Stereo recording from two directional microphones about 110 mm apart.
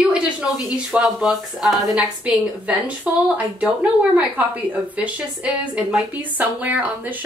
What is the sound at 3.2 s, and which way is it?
A woman's voice, 10° right (ahead or behind).